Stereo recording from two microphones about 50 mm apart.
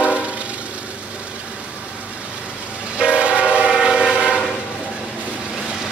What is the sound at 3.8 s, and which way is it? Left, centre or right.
Train, centre.